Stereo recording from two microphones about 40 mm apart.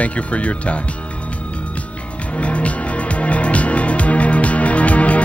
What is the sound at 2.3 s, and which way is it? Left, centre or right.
Music, left.